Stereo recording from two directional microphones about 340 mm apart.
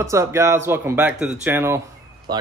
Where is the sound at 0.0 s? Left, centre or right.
Centre.